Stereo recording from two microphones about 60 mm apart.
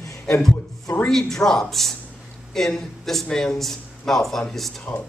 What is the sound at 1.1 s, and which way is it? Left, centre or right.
Speech, centre.